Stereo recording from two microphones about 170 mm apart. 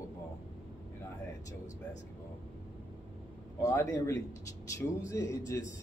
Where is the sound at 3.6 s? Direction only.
15° left (ahead or behind).